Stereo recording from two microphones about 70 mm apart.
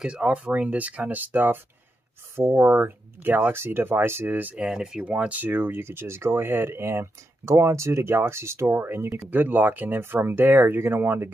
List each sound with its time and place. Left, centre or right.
0.0 s speech: centre
4.6 s speech: centre
5.4 s speech: right